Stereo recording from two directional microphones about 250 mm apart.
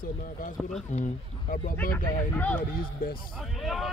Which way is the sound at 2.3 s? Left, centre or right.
Centre.